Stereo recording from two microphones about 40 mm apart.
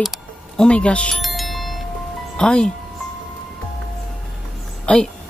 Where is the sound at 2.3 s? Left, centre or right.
Left.